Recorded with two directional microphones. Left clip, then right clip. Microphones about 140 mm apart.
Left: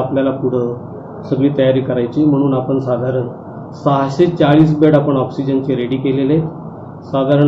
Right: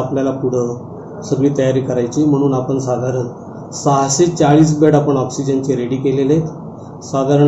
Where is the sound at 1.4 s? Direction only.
Centre (ahead or behind).